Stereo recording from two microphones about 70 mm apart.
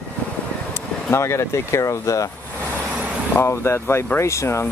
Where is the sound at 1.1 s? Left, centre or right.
Left.